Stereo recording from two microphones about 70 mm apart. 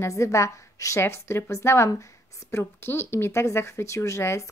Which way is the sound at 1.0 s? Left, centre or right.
Left.